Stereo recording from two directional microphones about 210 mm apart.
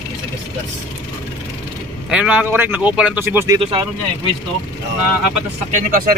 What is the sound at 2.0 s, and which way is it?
Speech, 5° right (ahead or behind).